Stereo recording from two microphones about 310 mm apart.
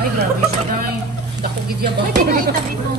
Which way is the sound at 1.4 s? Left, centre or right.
Right.